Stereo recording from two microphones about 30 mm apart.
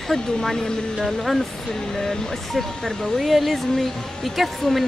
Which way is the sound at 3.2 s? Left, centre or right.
Centre.